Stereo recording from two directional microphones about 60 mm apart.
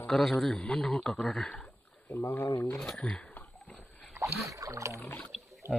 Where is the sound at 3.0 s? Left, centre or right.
Left.